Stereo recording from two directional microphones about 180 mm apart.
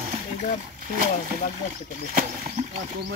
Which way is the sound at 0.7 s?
50° right (ahead or behind).